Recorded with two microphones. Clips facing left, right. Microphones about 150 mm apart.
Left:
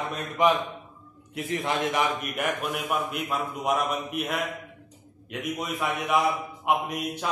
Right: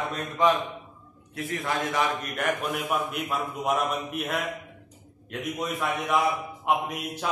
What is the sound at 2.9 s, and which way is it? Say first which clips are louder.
A man's voice: left 1 dB; centre (ahead or behind).